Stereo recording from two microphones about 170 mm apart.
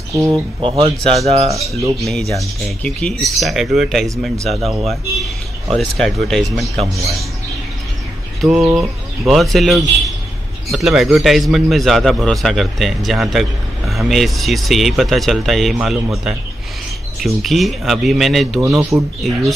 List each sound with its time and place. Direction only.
0.1 s speech: 20° right (ahead or behind)
0.6 s speech: 30° right (ahead or behind)
1.8 s a man's voice: centre (ahead or behind)
8.4 s bird: centre (ahead or behind)
8.7 s a man's voice: centre (ahead or behind)
18.8 s speech: 15° right (ahead or behind)